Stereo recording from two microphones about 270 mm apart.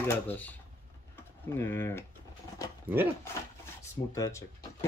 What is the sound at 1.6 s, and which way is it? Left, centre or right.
Speech, centre.